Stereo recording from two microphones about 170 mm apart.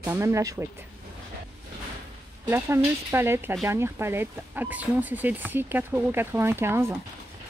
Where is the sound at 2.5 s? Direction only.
15° right (ahead or behind).